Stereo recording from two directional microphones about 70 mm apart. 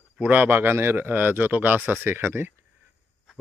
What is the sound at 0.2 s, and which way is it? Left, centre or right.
Speech, right.